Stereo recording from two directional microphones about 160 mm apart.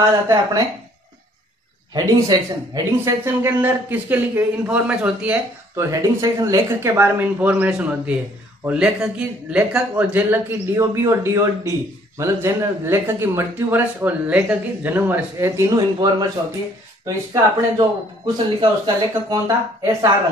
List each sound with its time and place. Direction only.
0.3 s speech: 25° right (ahead or behind)
2.0 s speech: 25° right (ahead or behind)
5.9 s speech: 20° right (ahead or behind)